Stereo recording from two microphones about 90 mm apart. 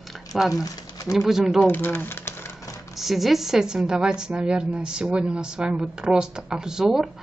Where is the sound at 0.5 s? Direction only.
40° left (ahead or behind).